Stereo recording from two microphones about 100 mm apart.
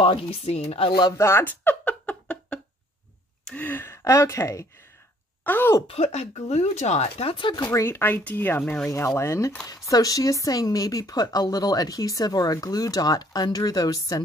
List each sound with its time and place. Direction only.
0.0 s speech: 65° left (ahead or behind)
1.1 s a sound: 25° left (ahead or behind)
3.4 s speech: 15° left (ahead or behind)
5.4 s speech: 20° left (ahead or behind)
5.9 s speech: 90° left; by 7.7 s 50° left (ahead or behind)
7.7 s speech: 25° left (ahead or behind)